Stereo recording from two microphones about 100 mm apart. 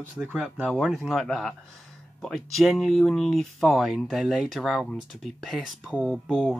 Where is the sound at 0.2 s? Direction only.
10° right (ahead or behind).